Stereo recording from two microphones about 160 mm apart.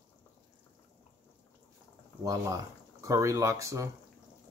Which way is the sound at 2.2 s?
20° right (ahead or behind).